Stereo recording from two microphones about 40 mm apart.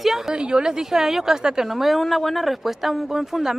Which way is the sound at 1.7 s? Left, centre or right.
Centre.